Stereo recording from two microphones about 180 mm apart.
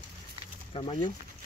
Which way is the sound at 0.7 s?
30° left (ahead or behind).